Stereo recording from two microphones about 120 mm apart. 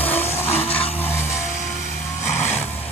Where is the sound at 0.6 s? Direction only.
55° left (ahead or behind).